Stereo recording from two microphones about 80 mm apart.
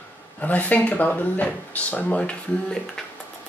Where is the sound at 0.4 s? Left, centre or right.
Centre.